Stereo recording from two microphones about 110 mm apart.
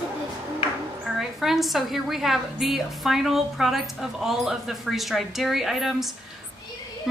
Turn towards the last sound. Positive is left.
turn(degrees=0)  # may be behind; listen again after turning